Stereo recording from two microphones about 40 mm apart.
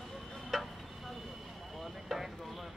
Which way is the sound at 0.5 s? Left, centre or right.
Centre.